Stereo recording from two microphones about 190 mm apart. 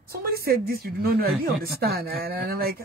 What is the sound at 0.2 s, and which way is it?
Speech, 50° right (ahead or behind).